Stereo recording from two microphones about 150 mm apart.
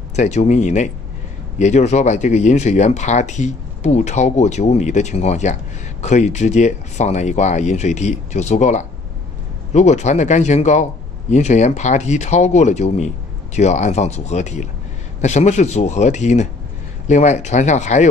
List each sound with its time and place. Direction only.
0.1 s speech: 50° left (ahead or behind)